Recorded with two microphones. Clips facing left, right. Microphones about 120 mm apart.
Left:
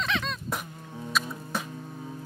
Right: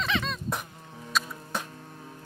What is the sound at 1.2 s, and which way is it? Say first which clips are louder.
Music: even; centre (ahead or behind).